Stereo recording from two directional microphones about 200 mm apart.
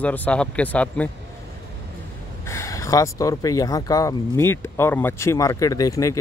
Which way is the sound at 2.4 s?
15° left (ahead or behind).